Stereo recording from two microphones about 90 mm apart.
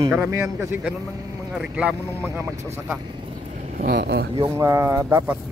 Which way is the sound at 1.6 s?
10° right (ahead or behind).